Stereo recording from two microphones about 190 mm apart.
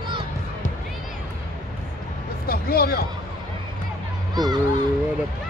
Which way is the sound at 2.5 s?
55° left (ahead or behind).